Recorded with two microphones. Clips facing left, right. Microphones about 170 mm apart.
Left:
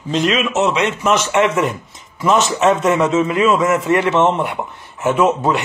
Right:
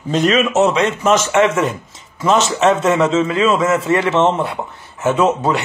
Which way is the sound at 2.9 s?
25° right (ahead or behind).